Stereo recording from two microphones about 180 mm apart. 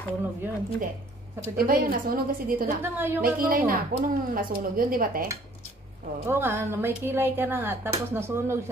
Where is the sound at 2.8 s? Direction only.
10° right (ahead or behind).